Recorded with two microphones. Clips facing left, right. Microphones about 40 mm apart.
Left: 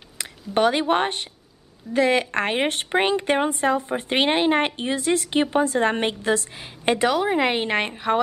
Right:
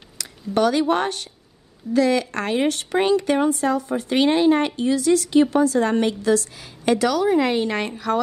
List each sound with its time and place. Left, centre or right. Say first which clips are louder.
0.2 s a woman's voice: even; left